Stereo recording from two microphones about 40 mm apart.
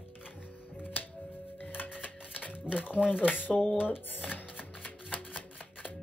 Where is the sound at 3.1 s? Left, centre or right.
Left.